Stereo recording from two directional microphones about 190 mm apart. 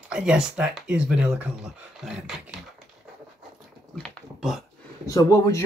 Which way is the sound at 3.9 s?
Centre (ahead or behind).